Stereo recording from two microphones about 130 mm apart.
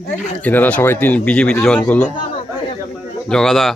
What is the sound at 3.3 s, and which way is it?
Speech, 5° left (ahead or behind).